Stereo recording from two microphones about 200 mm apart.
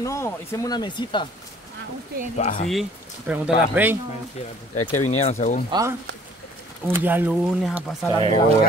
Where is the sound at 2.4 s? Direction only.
40° left (ahead or behind).